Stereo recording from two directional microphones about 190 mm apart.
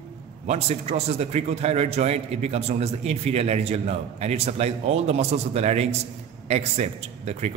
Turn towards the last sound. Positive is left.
turn(degrees=-35)  # may be behind; listen again after turning